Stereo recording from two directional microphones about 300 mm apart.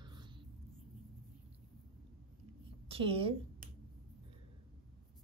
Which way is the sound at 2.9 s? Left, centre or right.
Centre.